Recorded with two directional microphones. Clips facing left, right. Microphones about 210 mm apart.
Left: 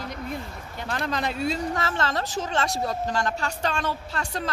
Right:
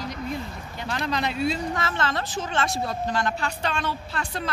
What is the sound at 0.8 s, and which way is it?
Speech, 45° left (ahead or behind).